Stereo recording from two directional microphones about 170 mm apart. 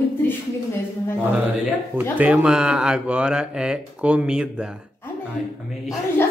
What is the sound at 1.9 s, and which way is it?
Speech, 10° right (ahead or behind).